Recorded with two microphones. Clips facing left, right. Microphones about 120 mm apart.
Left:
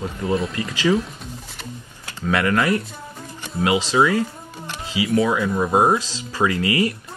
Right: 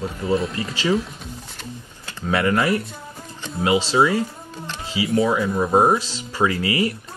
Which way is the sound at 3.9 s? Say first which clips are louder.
Even; 25° right (ahead or behind).